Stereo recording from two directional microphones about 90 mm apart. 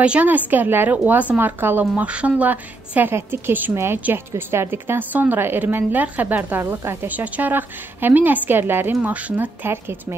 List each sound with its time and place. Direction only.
0.0 s a woman's voice: 15° right (ahead or behind)